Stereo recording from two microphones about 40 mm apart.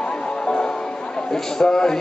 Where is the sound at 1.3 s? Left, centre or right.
Centre.